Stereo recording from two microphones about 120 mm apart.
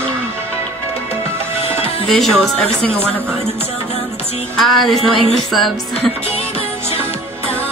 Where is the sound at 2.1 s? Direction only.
5° left (ahead or behind).